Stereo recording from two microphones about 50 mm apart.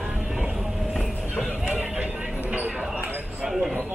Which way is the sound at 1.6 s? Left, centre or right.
Right.